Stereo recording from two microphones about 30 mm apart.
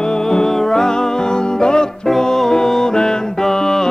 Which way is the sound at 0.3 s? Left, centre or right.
Centre.